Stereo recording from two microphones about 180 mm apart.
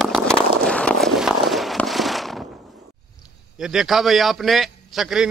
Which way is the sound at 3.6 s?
Centre (ahead or behind).